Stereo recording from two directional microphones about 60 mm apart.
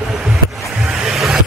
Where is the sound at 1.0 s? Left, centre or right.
Centre.